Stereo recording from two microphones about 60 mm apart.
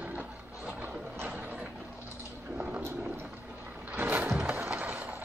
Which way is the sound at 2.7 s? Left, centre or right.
Right.